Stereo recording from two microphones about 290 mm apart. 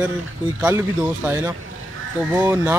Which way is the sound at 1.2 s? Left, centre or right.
Centre.